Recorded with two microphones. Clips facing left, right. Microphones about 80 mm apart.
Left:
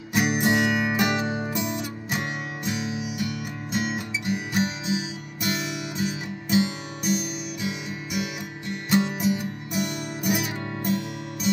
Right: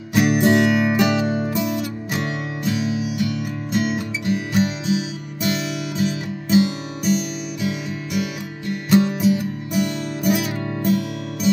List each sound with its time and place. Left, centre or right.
0.1 s music: centre
5.9 s music: centre